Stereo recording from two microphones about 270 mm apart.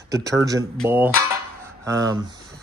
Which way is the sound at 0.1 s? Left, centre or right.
Centre.